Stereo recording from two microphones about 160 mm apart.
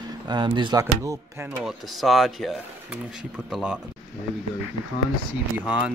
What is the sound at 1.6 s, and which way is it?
Speech, centre (ahead or behind).